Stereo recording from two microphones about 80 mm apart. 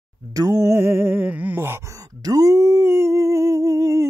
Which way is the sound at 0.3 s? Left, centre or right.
Right.